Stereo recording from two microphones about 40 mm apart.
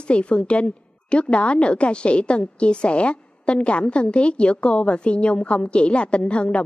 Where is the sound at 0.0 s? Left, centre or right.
Left.